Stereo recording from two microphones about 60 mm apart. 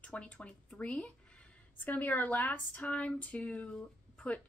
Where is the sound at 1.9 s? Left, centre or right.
Left.